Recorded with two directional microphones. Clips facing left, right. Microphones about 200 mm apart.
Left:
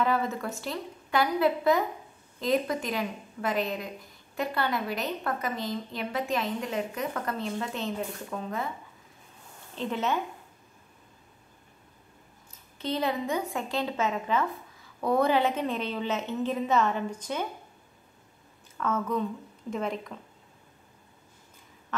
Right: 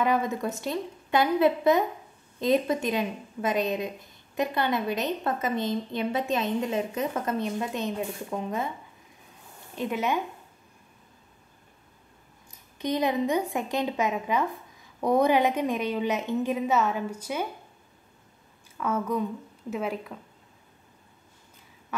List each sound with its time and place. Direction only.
0.0 s a woman's voice: 15° right (ahead or behind)
9.8 s a woman's voice: 10° right (ahead or behind)
12.7 s a woman's voice: 15° right (ahead or behind)
18.8 s a woman's voice: 10° right (ahead or behind)